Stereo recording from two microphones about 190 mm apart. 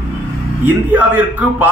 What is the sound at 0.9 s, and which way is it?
Speech, 10° right (ahead or behind).